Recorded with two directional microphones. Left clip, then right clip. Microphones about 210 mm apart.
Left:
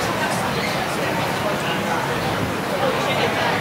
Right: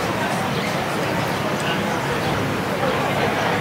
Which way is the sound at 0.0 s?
Centre (ahead or behind).